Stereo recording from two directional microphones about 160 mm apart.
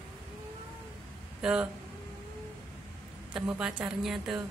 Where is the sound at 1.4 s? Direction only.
5° right (ahead or behind).